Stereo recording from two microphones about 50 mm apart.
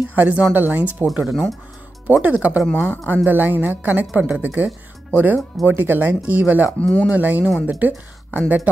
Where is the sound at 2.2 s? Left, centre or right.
Right.